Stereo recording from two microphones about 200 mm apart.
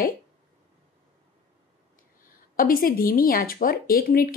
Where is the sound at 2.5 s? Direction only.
45° left (ahead or behind).